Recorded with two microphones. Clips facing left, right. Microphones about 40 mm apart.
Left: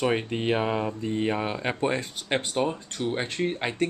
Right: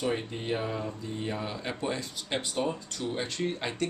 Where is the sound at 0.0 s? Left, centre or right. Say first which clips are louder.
Left 6 dB; left.